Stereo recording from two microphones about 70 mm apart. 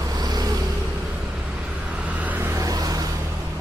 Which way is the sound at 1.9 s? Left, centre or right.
Centre.